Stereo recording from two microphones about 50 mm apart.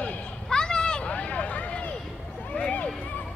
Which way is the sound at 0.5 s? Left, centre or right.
Centre.